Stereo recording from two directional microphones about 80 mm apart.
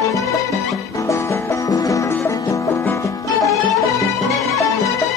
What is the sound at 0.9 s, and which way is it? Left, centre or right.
Music, left.